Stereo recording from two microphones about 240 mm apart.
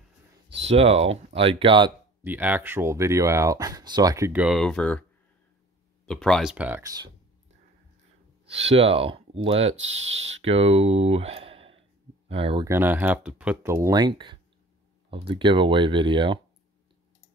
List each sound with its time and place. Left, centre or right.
0.7 s speech: right
2.2 s speech: centre
6.0 s speech: centre
8.5 s speech: right
12.6 s speech: centre